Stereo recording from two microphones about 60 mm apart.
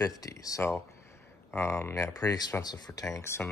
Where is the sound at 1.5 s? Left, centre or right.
Left.